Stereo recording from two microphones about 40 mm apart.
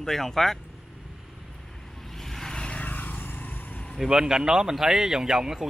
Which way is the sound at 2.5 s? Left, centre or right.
Left.